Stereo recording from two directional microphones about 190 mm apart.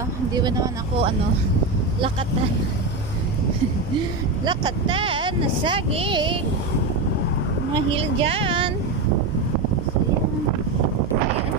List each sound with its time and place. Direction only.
4.5 s speech: 25° right (ahead or behind)
7.7 s speech: 30° right (ahead or behind)